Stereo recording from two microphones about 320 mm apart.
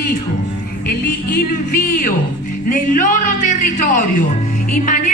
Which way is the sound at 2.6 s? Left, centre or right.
Left.